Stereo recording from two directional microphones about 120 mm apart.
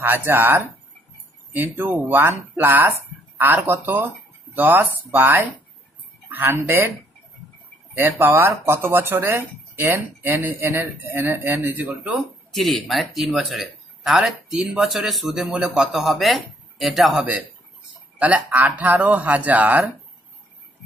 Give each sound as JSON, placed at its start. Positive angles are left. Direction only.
{"t": 0.0, "sound": "speech", "side_deg": -15}
{"t": 7.9, "sound": "speech", "side_deg": -20}
{"t": 12.2, "sound": "speech", "side_deg": 0}